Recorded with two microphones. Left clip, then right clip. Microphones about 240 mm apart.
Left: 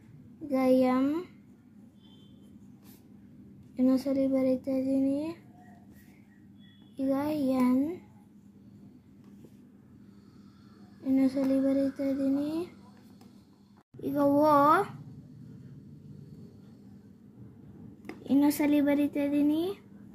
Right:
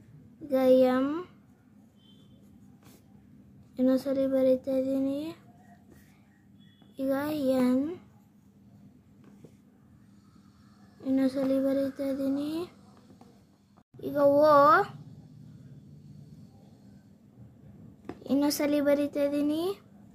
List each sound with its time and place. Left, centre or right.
0.5 s a child's voice: centre
3.7 s a child's voice: centre
7.0 s a child's voice: centre
11.1 s a child's voice: centre
12.4 s speech: right
14.0 s a child's voice: centre
18.0 s a child's voice: centre